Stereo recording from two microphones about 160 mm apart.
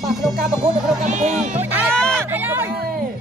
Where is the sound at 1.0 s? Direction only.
50° right (ahead or behind).